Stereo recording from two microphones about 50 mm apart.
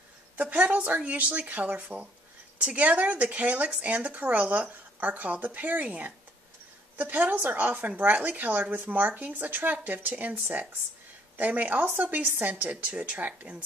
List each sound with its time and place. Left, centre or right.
0.4 s a woman's voice: right